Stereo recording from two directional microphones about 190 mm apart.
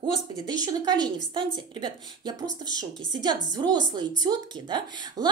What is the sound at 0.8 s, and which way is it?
A woman's voice, 20° right (ahead or behind).